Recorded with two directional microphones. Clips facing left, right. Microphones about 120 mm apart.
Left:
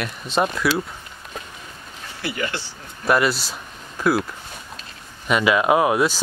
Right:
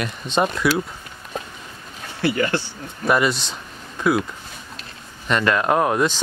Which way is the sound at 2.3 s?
50° right (ahead or behind).